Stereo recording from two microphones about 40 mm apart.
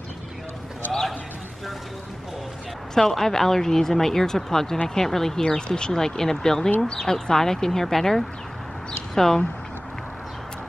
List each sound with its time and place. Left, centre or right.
2.9 s speech: centre